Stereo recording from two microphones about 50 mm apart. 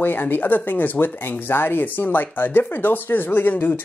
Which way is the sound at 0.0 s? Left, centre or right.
Left.